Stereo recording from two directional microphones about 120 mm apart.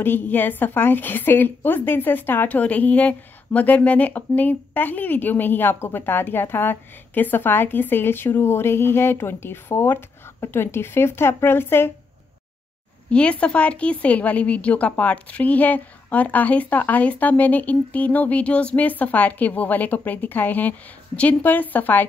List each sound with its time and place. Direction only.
0.0 s a woman's voice: 15° left (ahead or behind)
13.1 s a woman's voice: 10° left (ahead or behind)